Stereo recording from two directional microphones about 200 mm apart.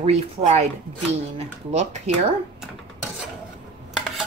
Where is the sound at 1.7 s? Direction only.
35° right (ahead or behind).